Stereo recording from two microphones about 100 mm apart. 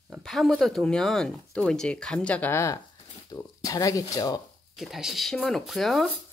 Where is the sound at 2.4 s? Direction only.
30° left (ahead or behind).